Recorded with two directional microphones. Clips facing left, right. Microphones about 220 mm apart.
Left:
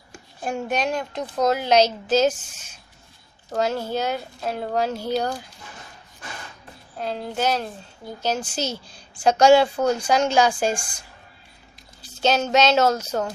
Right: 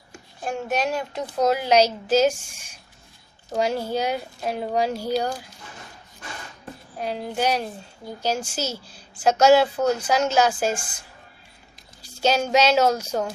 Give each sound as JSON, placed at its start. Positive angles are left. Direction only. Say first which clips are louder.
{"t": 0.4, "sound": "a woman's voice", "louder": "even", "side_deg": 0}
{"t": 7.0, "sound": "a woman's voice", "louder": "even", "side_deg": -10}